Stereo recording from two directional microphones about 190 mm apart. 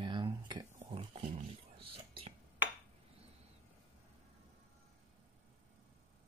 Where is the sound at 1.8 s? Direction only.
25° right (ahead or behind).